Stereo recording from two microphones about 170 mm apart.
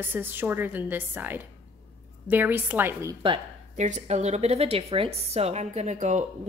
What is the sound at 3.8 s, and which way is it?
A woman's voice, 45° right (ahead or behind).